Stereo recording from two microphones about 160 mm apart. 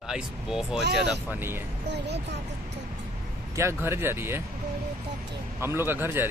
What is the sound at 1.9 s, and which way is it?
Speech, 90° right.